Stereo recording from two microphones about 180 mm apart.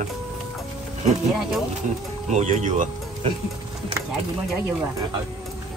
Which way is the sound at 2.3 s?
40° right (ahead or behind).